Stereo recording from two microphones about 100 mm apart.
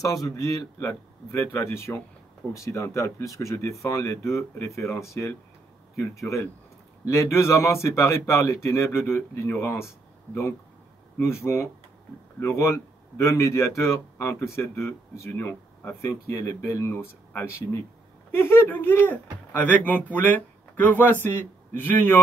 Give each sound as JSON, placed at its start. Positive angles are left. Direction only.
{"t": 0.0, "sound": "a man's voice", "side_deg": 35}
{"t": 11.1, "sound": "a man's voice", "side_deg": 25}